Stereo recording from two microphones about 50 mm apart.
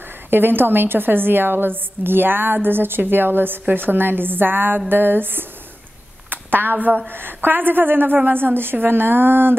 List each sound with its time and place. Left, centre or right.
0.3 s a woman's voice: right